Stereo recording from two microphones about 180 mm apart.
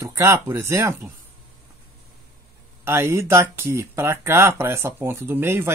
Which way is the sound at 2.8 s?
15° right (ahead or behind).